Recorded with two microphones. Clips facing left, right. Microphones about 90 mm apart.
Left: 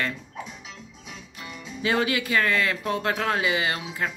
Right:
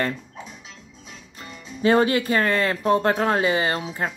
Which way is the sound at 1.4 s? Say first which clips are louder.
Right 7 dB; 35° right (ahead or behind).